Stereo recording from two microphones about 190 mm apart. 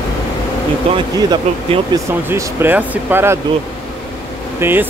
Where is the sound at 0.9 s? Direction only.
25° right (ahead or behind).